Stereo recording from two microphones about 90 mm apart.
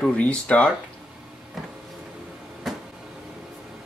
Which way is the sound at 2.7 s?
Centre (ahead or behind).